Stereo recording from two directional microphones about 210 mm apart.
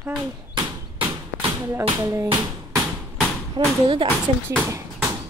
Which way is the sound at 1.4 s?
10° right (ahead or behind).